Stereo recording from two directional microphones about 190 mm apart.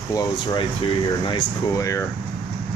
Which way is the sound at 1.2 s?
20° left (ahead or behind).